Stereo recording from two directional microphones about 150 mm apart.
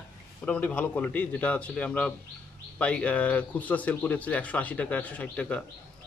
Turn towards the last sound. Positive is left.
turn(degrees=10)  # may be behind; listen again after turning